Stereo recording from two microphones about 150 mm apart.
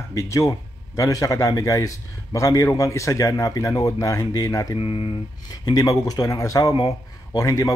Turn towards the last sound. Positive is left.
turn(degrees=20)  # may be behind; listen again after turning